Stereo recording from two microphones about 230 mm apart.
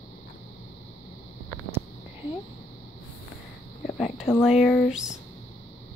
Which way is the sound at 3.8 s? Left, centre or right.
Centre.